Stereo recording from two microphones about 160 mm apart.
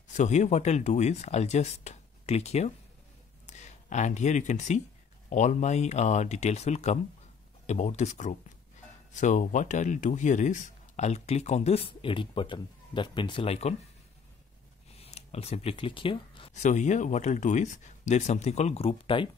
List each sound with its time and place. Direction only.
0.1 s speech: 45° left (ahead or behind)
15.0 s a sound: 40° left (ahead or behind)
16.5 s speech: 50° left (ahead or behind)